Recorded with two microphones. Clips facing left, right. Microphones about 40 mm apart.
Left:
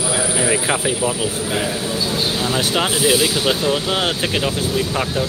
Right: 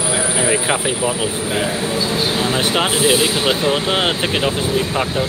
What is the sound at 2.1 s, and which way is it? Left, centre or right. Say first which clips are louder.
Speech: right 1 dB; right.